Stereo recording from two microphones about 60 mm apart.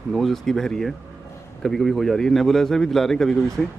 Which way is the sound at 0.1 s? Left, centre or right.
Centre.